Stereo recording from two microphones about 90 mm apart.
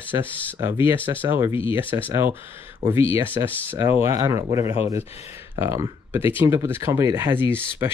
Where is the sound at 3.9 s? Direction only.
35° right (ahead or behind).